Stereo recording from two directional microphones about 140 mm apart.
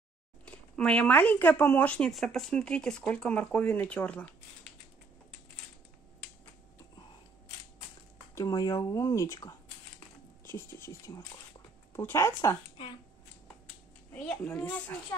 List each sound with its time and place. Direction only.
0.5 s speech: 5° left (ahead or behind)
8.4 s speech: 25° left (ahead or behind)
14.4 s speech: 10° left (ahead or behind)